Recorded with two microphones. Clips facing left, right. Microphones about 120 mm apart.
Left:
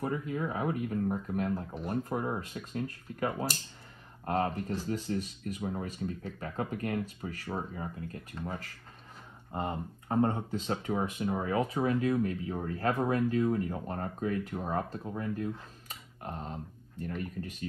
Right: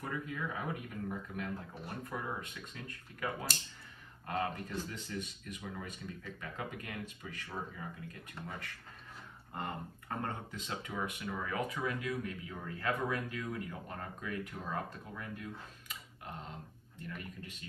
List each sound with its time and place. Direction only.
0.0 s speech: 40° left (ahead or behind)